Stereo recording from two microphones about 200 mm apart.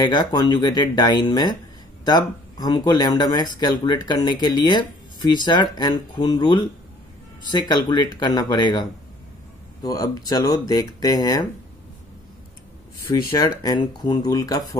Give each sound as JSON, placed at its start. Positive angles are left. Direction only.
{"t": 0.0, "sound": "speech", "side_deg": 20}
{"t": 9.8, "sound": "speech", "side_deg": 20}
{"t": 13.1, "sound": "speech", "side_deg": 20}